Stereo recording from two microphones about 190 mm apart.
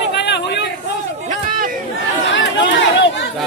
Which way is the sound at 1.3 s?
45° right (ahead or behind).